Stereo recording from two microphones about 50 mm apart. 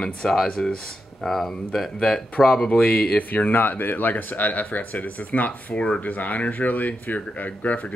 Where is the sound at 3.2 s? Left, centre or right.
Left.